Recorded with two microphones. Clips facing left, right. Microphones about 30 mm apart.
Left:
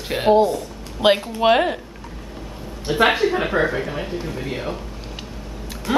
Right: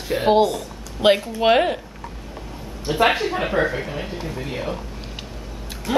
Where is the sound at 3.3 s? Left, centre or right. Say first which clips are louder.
Left 1 dB; centre.